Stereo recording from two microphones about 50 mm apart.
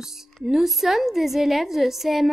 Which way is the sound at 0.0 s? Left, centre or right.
Centre.